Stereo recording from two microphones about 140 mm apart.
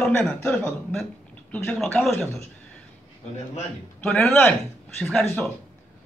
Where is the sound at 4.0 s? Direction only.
10° left (ahead or behind).